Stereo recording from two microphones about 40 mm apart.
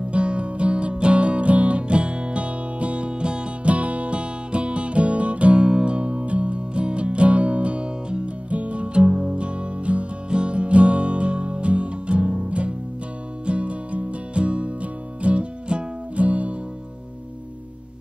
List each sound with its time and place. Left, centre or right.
0.1 s music: right